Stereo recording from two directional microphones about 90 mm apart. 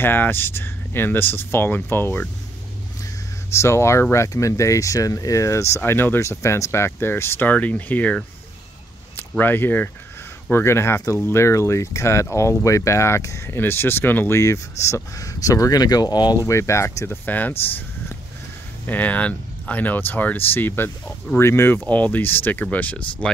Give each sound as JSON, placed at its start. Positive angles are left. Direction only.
{"t": 0.0, "sound": "speech", "side_deg": 25}
{"t": 3.5, "sound": "speech", "side_deg": 30}
{"t": 9.4, "sound": "speech", "side_deg": 20}
{"t": 14.4, "sound": "speech", "side_deg": 35}
{"t": 16.4, "sound": "speech", "side_deg": 35}
{"t": 18.9, "sound": "speech", "side_deg": 15}